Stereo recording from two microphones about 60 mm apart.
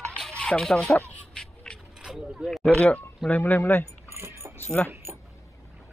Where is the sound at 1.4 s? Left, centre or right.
Centre.